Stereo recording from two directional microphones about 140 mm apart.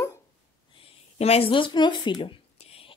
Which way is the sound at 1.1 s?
45° left (ahead or behind).